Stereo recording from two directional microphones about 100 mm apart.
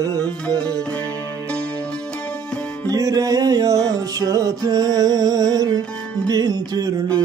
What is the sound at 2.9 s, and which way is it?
Music, 35° right (ahead or behind).